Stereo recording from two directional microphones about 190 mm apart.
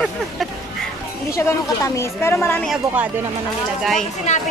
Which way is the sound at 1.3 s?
15° left (ahead or behind).